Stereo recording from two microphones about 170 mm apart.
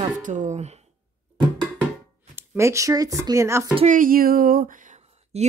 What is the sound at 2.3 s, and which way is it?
Speech, 15° right (ahead or behind).